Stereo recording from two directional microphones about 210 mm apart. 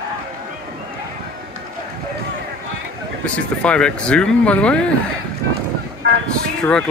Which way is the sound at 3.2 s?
5° left (ahead or behind).